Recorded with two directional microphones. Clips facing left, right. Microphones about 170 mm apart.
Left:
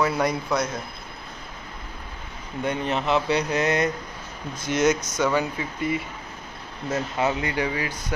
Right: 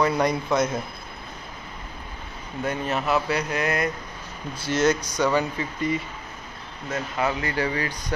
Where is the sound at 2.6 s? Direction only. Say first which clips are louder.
Left 1 dB; 20° left (ahead or behind).